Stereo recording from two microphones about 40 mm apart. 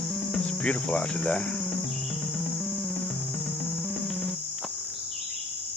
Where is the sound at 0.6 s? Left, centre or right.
Left.